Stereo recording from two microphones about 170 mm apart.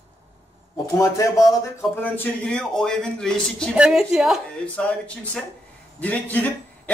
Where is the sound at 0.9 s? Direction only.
20° left (ahead or behind).